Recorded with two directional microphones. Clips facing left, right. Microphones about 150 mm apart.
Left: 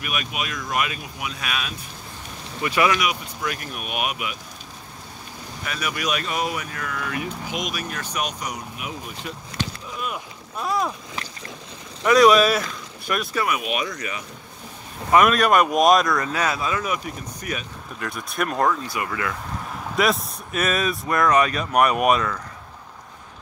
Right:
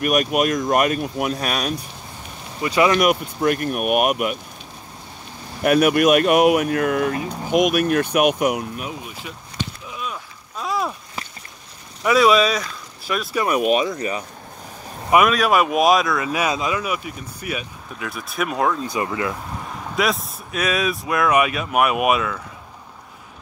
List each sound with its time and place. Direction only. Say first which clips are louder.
0.0 s speech: right 11 dB; 50° right (ahead or behind)
2.6 s speech: right 3 dB; 25° right (ahead or behind)
3.0 s speech: right 8 dB; 50° right (ahead or behind)
5.6 s speech: right 14 dB; 55° right (ahead or behind)
7.1 s speech: right 5 dB; 35° right (ahead or behind)
7.4 s speech: right 12 dB; 55° right (ahead or behind)
10.6 s a sound: even; centre (ahead or behind)
12.0 s speech: left 1 dB; centre (ahead or behind)
13.7 s speech: right 7 dB; 30° right (ahead or behind)
15.2 s speech: even; centre (ahead or behind)
16.3 s speech: right 2 dB; 15° right (ahead or behind)
18.9 s speech: right 4 dB; 20° right (ahead or behind)
19.7 s speech: even; centre (ahead or behind)